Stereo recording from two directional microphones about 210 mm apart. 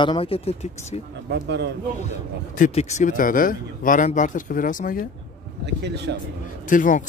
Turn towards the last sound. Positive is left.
turn(degrees=40)  # may be behind; listen again after turning